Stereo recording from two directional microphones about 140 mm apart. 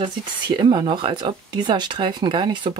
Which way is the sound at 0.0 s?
35° right (ahead or behind).